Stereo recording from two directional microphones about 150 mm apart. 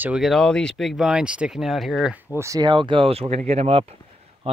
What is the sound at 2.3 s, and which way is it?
Speech, 20° right (ahead or behind).